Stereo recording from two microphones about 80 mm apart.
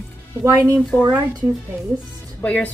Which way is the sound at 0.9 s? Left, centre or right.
Right.